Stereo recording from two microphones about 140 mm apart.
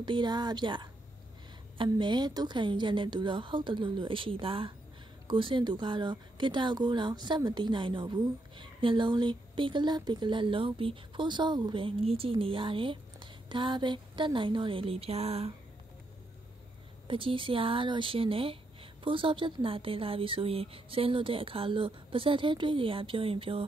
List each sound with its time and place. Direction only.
0.0 s speech: 35° right (ahead or behind)
17.1 s speech: 40° right (ahead or behind)